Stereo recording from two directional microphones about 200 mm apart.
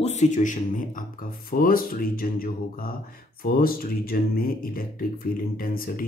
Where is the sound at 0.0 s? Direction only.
35° left (ahead or behind).